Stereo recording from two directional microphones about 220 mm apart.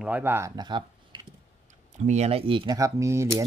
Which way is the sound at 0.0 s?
10° right (ahead or behind).